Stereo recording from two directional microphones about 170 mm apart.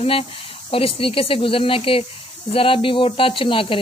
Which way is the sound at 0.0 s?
35° left (ahead or behind).